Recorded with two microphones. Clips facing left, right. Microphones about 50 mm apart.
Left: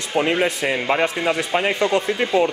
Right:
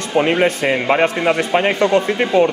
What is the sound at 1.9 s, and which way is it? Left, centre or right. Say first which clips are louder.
Speech: right 4 dB; right.